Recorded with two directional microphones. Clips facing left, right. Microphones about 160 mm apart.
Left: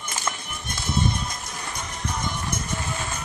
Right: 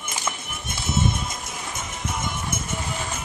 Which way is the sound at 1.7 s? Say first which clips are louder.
Even; 5° right (ahead or behind).